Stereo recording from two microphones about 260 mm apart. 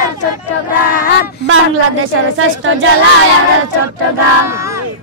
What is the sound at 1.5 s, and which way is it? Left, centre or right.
Speech, right.